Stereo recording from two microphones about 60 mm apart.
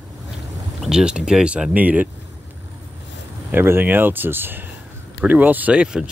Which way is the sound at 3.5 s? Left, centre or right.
Right.